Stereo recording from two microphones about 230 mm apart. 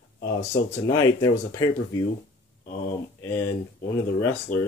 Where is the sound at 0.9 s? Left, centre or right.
Centre.